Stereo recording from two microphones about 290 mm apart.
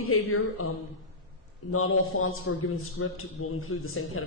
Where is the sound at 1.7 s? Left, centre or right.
Left.